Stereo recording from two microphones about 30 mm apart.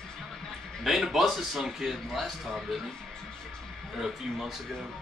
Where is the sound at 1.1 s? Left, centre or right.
Centre.